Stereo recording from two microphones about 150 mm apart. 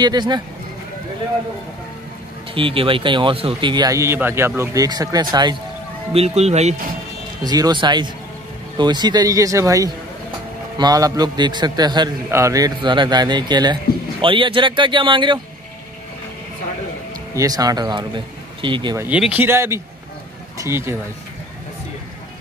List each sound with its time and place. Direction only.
0.0 s speech: 30° right (ahead or behind)
2.5 s speech: 35° right (ahead or behind)
6.1 s speech: 45° right (ahead or behind)
7.4 s speech: 25° right (ahead or behind)
17.4 s speech: 25° right (ahead or behind)
18.9 s speech: 10° right (ahead or behind)